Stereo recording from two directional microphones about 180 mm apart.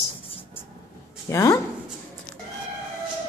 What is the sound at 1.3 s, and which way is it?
Speech, 15° left (ahead or behind).